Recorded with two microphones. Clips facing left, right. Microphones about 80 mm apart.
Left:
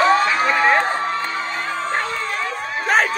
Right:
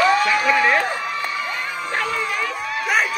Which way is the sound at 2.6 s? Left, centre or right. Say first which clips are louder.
Left 4 dB; left.